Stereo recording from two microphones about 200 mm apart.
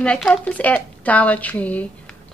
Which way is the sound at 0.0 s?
5° left (ahead or behind).